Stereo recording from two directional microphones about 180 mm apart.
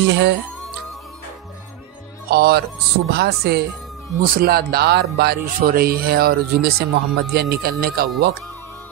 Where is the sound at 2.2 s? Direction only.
60° right (ahead or behind).